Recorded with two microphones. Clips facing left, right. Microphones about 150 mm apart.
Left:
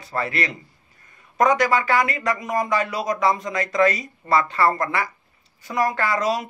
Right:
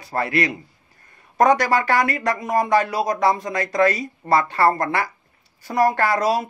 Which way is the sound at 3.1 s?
60° right (ahead or behind).